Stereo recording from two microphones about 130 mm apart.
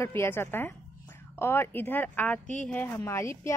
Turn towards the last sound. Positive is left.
turn(degrees=25)  # may be behind; listen again after turning